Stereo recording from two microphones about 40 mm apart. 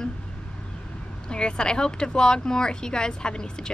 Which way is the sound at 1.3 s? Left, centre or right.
Left.